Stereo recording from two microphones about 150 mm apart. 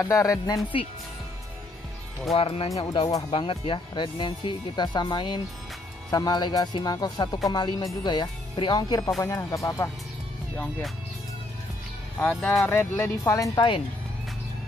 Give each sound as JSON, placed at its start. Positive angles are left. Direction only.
{"t": 0.0, "sound": "speech", "side_deg": 20}
{"t": 2.3, "sound": "speech", "side_deg": 40}
{"t": 12.2, "sound": "speech", "side_deg": 10}